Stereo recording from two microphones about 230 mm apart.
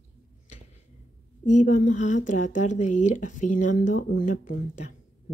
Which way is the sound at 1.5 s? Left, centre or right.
Left.